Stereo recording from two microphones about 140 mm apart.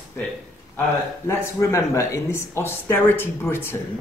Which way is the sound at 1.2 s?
20° left (ahead or behind).